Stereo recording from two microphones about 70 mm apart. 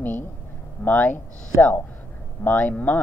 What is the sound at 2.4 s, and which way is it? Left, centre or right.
Speech, left.